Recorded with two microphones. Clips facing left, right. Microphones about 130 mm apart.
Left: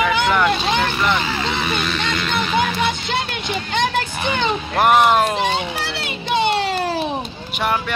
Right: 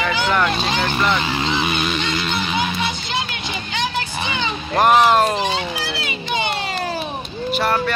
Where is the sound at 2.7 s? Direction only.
55° left (ahead or behind).